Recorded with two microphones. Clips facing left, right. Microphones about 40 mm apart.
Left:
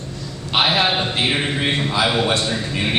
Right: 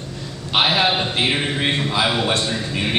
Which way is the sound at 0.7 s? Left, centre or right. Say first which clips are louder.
Even; centre.